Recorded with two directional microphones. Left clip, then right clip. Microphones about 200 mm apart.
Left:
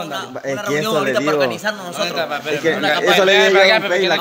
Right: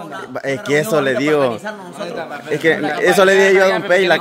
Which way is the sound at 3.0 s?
45° right (ahead or behind).